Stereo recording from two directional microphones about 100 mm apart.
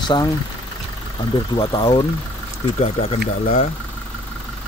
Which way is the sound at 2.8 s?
90° left.